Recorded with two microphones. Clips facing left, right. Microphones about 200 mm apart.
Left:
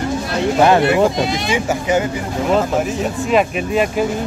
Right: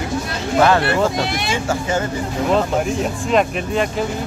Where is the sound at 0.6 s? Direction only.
15° left (ahead or behind).